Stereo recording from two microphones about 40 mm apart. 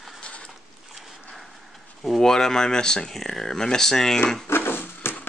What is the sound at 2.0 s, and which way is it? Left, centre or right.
Speech, centre.